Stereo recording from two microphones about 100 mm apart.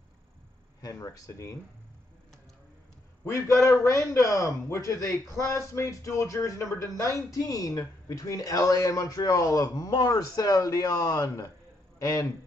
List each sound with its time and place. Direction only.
0.8 s speech: 35° left (ahead or behind)
3.3 s a man's voice: 30° left (ahead or behind)